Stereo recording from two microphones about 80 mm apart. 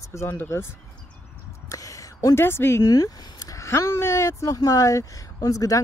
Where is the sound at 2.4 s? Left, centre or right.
Left.